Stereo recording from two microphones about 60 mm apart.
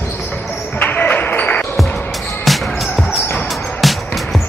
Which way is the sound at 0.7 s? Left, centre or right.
Left.